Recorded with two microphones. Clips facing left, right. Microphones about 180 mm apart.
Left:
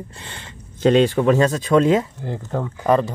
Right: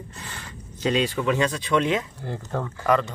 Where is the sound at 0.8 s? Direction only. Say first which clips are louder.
Left 8 dB; 50° left (ahead or behind).